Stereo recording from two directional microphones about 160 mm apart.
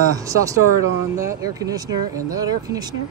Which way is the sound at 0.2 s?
20° right (ahead or behind).